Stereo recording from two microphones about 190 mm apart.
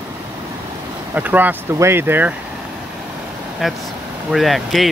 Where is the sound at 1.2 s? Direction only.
10° right (ahead or behind).